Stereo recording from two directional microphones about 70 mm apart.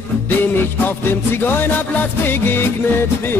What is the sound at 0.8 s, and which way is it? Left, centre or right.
Music, left.